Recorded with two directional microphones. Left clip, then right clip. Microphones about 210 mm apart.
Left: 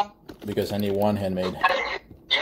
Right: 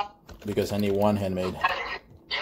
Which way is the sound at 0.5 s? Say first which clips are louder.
Even; 5° right (ahead or behind).